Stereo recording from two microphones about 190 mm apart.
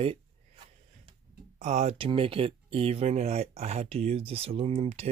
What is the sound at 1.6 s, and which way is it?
Speech, 35° right (ahead or behind).